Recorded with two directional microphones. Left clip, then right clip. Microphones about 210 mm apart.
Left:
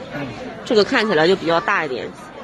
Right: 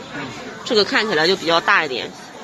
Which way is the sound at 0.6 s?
15° left (ahead or behind).